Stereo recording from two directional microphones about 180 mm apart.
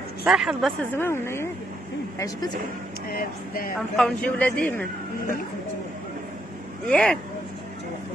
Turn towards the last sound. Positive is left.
turn(degrees=5)  # may be behind; listen again after turning